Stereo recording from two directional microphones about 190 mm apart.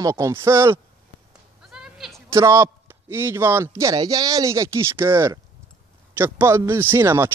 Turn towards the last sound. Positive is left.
turn(degrees=-10)  # may be behind; listen again after turning